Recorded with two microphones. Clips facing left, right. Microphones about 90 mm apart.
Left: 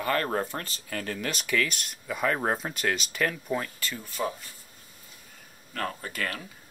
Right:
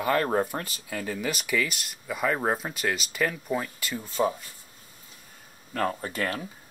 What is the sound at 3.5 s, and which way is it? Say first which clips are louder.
Speech: right 1 dB; 10° right (ahead or behind).